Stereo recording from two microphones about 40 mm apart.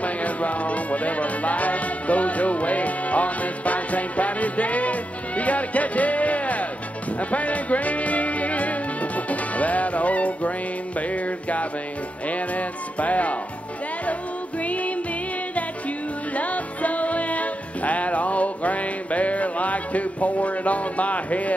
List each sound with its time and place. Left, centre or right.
0.0 s music: left
14.6 s music: left
16.3 s music: left